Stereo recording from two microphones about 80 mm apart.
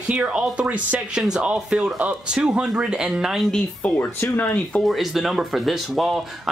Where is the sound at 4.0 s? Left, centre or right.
Left.